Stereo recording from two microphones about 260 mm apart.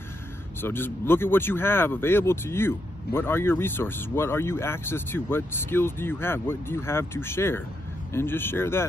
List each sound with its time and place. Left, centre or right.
0.6 s speech: centre